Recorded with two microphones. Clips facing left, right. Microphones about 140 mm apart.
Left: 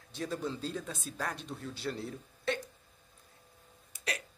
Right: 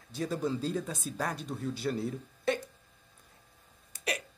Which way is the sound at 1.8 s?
10° right (ahead or behind).